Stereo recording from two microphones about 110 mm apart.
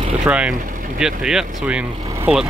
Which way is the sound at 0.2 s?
10° right (ahead or behind).